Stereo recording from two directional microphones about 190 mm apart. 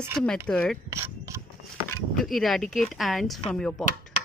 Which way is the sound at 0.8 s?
15° right (ahead or behind).